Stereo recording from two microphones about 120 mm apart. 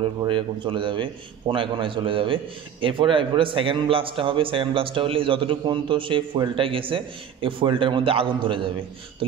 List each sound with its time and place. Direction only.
0.2 s a man's voice: 45° right (ahead or behind)